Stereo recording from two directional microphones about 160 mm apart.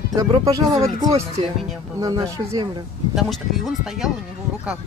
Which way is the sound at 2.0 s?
20° right (ahead or behind).